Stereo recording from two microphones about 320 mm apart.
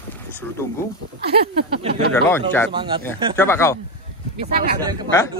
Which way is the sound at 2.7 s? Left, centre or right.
Centre.